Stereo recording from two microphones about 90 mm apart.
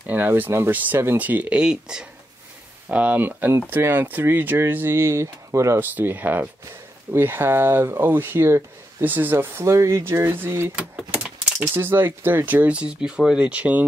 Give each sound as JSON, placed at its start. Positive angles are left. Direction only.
{"t": 0.0, "sound": "speech", "side_deg": -20}
{"t": 5.8, "sound": "speech", "side_deg": -20}
{"t": 11.7, "sound": "speech", "side_deg": -25}